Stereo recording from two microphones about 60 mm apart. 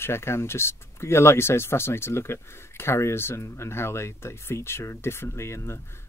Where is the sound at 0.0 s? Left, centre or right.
Left.